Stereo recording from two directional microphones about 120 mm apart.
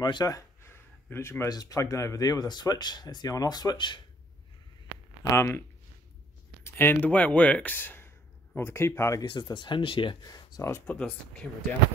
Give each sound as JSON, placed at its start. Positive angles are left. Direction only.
{"t": 0.0, "sound": "a sound", "side_deg": 35}
{"t": 1.5, "sound": "speech", "side_deg": 30}
{"t": 5.3, "sound": "speech", "side_deg": 20}
{"t": 6.6, "sound": "speech", "side_deg": 20}
{"t": 9.2, "sound": "speech", "side_deg": 40}
{"t": 10.2, "sound": "speech", "side_deg": 30}
{"t": 11.0, "sound": "speech", "side_deg": 10}